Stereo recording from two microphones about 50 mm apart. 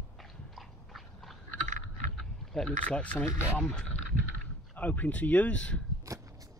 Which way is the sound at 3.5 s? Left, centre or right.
Centre.